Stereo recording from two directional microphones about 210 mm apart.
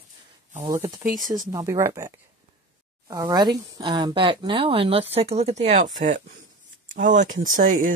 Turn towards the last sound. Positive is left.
turn(degrees=-40)  # may be behind; listen again after turning